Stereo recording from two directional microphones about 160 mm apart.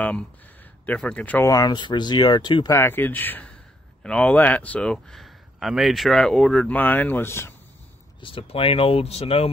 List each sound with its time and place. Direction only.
0.0 s speech: 10° left (ahead or behind)
1.5 s speech: 25° left (ahead or behind)
2.7 s speech: 15° left (ahead or behind)
8.2 s speech: 35° left (ahead or behind)